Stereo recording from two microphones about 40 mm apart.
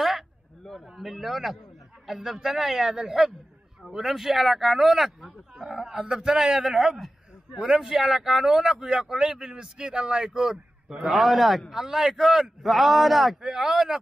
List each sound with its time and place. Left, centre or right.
0.7 s a man's voice: centre; by 10.5 s right
11.0 s a man's voice: centre
11.7 s a man's voice: centre